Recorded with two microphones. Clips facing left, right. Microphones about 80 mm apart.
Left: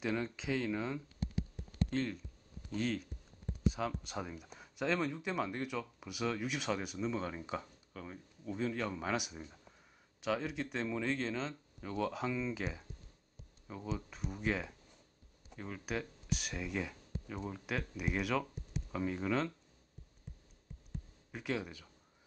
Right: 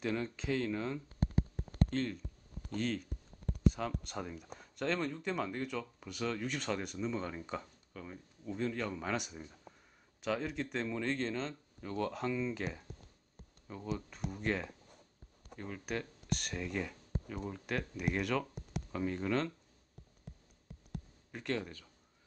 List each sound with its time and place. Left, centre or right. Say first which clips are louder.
0.0 s speech: even; centre
1.0 s a sound: right 5 dB; right
1.9 s speech: even; centre
21.3 s a man's voice: right 1 dB; centre